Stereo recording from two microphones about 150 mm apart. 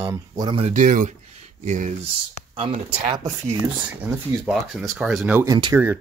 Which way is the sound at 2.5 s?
35° right (ahead or behind).